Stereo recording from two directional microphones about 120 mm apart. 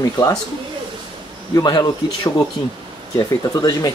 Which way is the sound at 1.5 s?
35° left (ahead or behind).